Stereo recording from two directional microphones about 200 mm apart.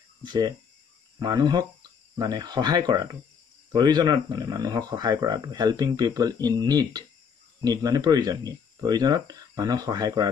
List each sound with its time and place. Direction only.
0.2 s speech: 20° right (ahead or behind)